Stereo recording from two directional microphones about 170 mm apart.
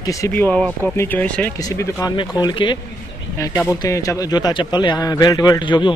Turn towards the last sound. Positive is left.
turn(degrees=25)  # may be behind; listen again after turning